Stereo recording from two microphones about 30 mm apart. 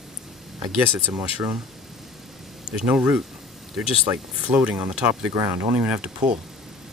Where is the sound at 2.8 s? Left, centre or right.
Right.